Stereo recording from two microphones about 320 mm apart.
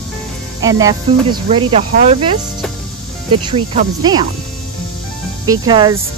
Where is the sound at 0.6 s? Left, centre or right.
Centre.